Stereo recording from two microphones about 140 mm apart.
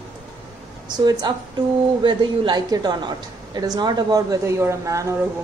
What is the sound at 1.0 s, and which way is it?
A woman's voice, 30° right (ahead or behind).